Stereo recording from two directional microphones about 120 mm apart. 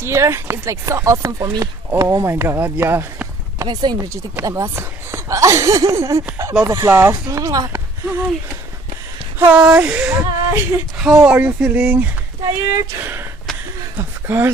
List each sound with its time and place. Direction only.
0.0 s speech: 20° right (ahead or behind)
3.6 s speech: 35° right (ahead or behind)
4.1 s speech: 25° right (ahead or behind)
9.4 s speech: 10° right (ahead or behind)